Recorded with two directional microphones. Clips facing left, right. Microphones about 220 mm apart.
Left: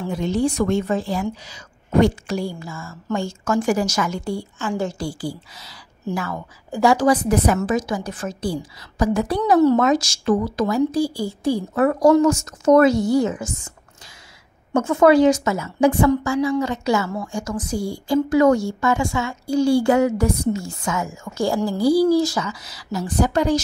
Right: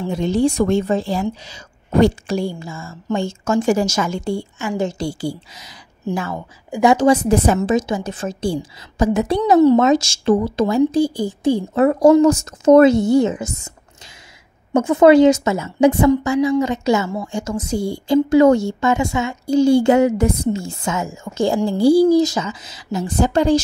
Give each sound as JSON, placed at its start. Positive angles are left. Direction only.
{"t": 0.0, "sound": "a woman's voice", "side_deg": -25}
{"t": 14.7, "sound": "a woman's voice", "side_deg": -20}